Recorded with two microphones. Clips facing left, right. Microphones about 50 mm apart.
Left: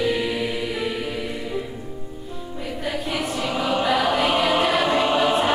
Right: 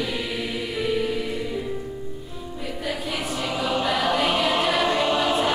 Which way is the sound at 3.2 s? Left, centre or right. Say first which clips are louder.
Left 3 dB; centre.